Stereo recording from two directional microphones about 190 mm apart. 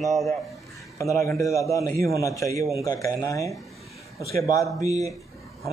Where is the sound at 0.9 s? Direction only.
15° left (ahead or behind).